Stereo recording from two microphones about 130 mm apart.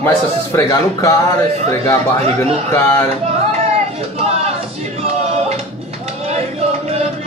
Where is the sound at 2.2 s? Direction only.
50° right (ahead or behind).